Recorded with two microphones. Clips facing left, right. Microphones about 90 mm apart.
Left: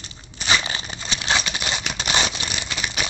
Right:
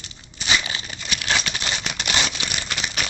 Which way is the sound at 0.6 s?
25° left (ahead or behind).